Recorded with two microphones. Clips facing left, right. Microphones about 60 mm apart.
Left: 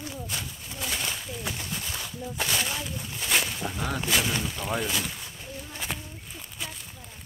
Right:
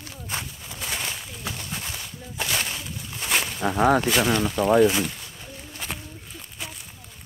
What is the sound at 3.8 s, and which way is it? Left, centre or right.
Speech, right.